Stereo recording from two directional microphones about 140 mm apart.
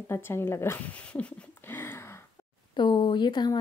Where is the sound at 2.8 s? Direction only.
35° left (ahead or behind).